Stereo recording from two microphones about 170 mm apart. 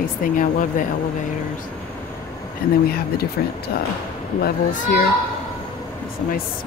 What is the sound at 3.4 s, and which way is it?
Speech, 60° left (ahead or behind).